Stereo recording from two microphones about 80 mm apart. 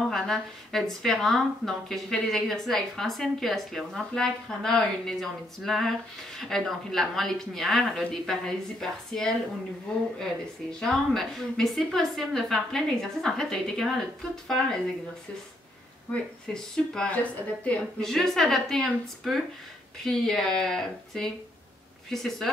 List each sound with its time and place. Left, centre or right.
0.1 s speech: centre
16.1 s speech: centre
17.1 s a woman's voice: centre
18.0 s speech: centre